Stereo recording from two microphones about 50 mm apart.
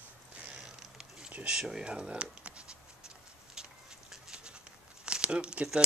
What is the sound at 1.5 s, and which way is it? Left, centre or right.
Speech, centre.